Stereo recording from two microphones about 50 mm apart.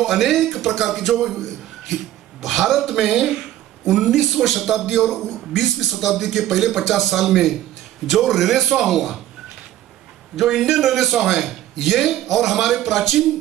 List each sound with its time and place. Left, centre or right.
0.0 s a man's voice: centre
10.3 s a man's voice: centre